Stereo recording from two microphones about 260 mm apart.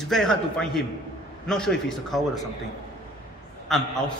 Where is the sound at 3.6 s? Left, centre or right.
Centre.